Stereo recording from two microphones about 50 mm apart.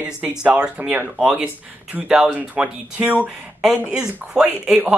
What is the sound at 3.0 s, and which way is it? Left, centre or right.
Speech, right.